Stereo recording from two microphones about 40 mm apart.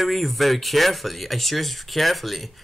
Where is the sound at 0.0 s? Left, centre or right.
Centre.